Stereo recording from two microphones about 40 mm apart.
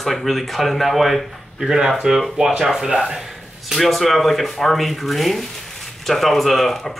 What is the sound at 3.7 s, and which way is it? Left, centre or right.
Speech, centre.